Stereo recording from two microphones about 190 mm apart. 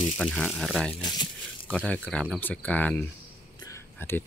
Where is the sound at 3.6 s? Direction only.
15° left (ahead or behind).